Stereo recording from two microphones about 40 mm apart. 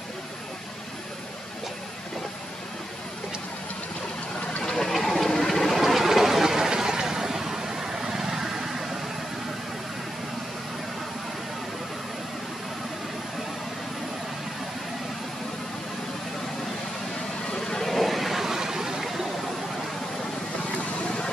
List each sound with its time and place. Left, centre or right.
4.6 s a sound: centre
5.9 s vehicle: centre
17.5 s vehicle: centre
21.0 s vehicle: left